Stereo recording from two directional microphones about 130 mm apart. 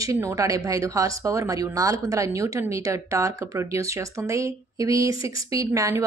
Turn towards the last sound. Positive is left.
turn(degrees=-25)  # may be behind; listen again after turning